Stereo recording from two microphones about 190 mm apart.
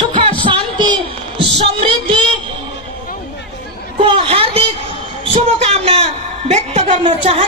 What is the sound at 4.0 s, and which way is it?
A woman's voice, 30° right (ahead or behind).